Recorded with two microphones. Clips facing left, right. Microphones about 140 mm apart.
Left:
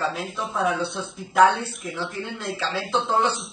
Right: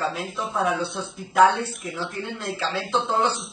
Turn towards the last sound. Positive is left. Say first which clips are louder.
# left 1 dB
turn(degrees=0)  # may be behind; listen again after turning